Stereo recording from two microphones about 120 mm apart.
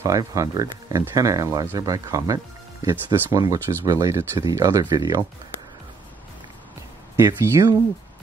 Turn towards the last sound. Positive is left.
turn(degrees=-30)  # may be behind; listen again after turning